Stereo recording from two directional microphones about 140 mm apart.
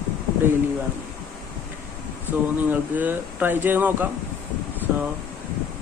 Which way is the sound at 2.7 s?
15° right (ahead or behind).